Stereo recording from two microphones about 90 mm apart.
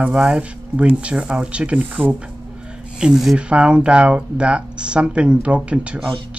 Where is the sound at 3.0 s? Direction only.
5° right (ahead or behind).